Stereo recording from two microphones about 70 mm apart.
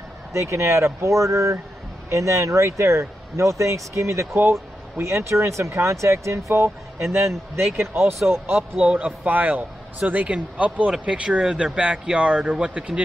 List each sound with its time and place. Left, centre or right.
0.3 s speech: right
4.4 s a sound: right
5.0 s speech: right
8.5 s a man's voice: centre